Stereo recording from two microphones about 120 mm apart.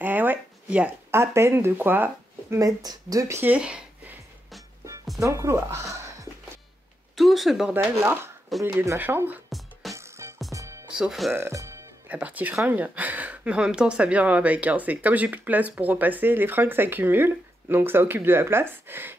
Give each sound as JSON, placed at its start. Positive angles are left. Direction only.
{"t": 0.0, "sound": "a sound", "side_deg": -15}
{"t": 1.1, "sound": "speech", "side_deg": -20}
{"t": 2.6, "sound": "speech", "side_deg": -30}
{"t": 5.2, "sound": "speech", "side_deg": -25}
{"t": 7.2, "sound": "speech", "side_deg": 0}
{"t": 7.9, "sound": "speech", "side_deg": -20}
{"t": 9.9, "sound": "music", "side_deg": -25}
{"t": 11.0, "sound": "speech", "side_deg": 0}
{"t": 11.3, "sound": "speech", "side_deg": -25}
{"t": 12.1, "sound": "speech", "side_deg": -15}